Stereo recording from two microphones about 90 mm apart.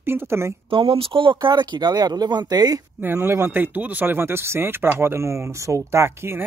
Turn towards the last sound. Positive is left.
turn(degrees=-30)  # may be behind; listen again after turning